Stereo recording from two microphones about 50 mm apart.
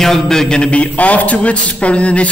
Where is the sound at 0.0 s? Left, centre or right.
Centre.